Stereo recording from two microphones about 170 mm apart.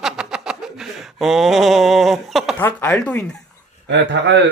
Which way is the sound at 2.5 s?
10° left (ahead or behind).